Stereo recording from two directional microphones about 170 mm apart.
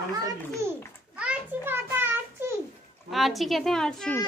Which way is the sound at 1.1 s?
10° right (ahead or behind).